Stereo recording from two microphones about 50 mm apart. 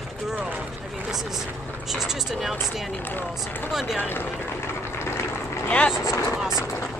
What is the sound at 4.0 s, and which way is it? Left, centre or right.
Speech, left.